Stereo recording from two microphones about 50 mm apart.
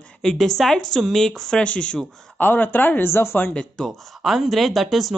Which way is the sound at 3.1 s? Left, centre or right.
Left.